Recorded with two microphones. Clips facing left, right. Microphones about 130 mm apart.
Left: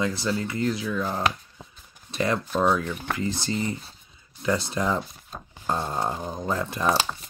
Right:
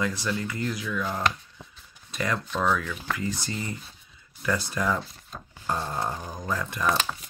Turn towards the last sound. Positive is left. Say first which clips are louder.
# left 2 dB
turn(degrees=30)  # may be behind; listen again after turning